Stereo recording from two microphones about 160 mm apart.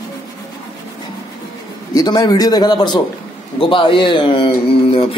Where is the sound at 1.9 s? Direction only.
25° left (ahead or behind).